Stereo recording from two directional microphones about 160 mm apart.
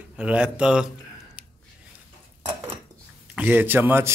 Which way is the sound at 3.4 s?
10° right (ahead or behind).